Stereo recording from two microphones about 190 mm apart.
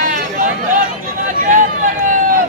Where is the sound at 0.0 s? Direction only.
45° right (ahead or behind).